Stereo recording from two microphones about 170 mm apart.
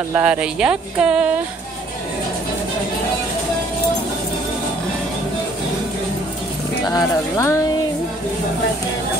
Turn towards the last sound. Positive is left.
turn(degrees=15)  # may be behind; listen again after turning